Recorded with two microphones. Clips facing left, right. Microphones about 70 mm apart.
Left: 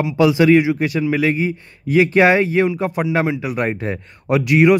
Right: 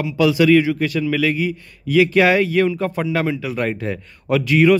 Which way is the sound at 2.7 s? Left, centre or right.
Centre.